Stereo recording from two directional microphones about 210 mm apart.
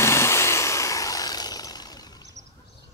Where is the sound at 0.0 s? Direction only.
10° left (ahead or behind).